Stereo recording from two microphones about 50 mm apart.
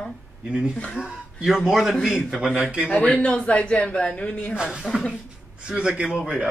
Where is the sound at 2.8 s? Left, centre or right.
Left.